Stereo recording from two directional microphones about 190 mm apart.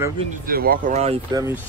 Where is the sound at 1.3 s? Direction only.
20° right (ahead or behind).